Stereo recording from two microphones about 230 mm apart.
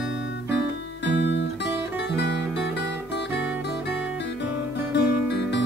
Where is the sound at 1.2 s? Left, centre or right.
Left.